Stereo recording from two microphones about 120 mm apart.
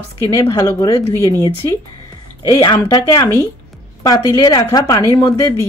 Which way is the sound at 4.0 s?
30° left (ahead or behind).